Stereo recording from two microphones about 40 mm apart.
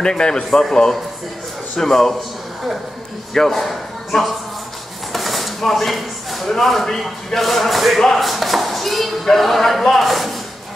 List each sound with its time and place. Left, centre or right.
0.0 s a man's voice: centre
3.3 s speech: centre
5.1 s a sound: centre
7.3 s speech: centre